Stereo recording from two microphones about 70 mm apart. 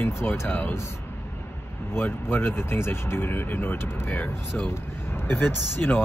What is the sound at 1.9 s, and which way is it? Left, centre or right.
Speech, left.